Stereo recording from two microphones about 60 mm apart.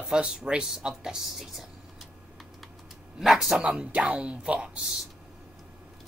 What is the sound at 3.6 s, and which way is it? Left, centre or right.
Speech, right.